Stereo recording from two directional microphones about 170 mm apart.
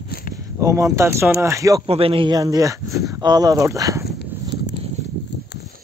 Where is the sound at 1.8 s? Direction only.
35° right (ahead or behind); by 4.0 s 20° right (ahead or behind).